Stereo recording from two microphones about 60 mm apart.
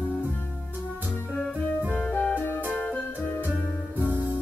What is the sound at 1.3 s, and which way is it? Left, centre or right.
Music, centre.